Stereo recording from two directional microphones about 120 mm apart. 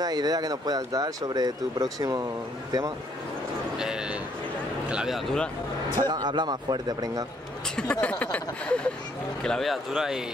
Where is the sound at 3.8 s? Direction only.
5° right (ahead or behind).